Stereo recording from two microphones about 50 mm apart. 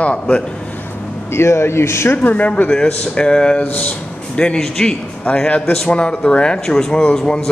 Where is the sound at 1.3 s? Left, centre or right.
Left.